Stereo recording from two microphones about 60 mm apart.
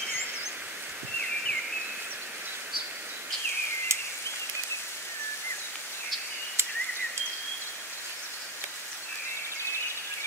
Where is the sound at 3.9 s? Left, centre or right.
Right.